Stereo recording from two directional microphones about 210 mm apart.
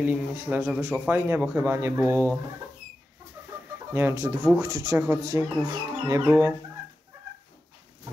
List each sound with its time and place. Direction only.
0.0 s speech: 10° right (ahead or behind)
3.4 s chicken: 10° right (ahead or behind)
3.9 s speech: 15° right (ahead or behind)
4.9 s speech: 10° right (ahead or behind)